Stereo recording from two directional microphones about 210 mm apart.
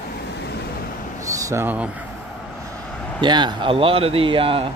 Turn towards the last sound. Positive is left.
turn(degrees=-25)  # may be behind; listen again after turning